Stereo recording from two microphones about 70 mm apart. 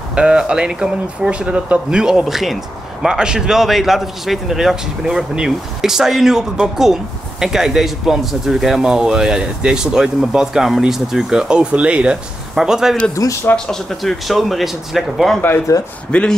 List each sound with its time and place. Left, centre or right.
0.1 s speech: centre
13.7 s speech: centre
16.1 s speech: centre